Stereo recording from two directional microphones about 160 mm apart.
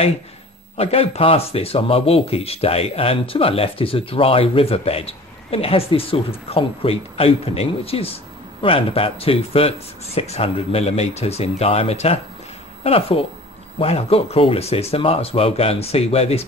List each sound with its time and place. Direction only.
0.7 s speech: 40° left (ahead or behind)